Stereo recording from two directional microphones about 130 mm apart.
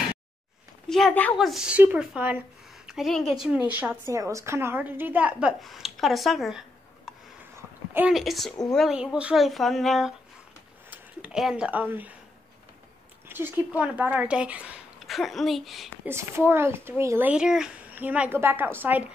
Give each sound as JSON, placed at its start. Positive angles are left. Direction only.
{"t": 0.8, "sound": "a woman's voice", "side_deg": 0}
{"t": 2.9, "sound": "a woman's voice", "side_deg": 0}
{"t": 4.1, "sound": "a woman's voice", "side_deg": -25}
{"t": 5.6, "sound": "speech", "side_deg": 0}
{"t": 8.1, "sound": "speech", "side_deg": 0}
{"t": 10.9, "sound": "a sound", "side_deg": -5}
{"t": 13.3, "sound": "speech", "side_deg": -15}
{"t": 16.1, "sound": "speech", "side_deg": -20}
{"t": 17.3, "sound": "a woman's voice", "side_deg": -5}